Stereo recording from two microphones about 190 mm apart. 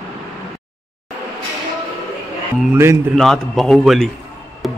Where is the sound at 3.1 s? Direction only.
Centre (ahead or behind).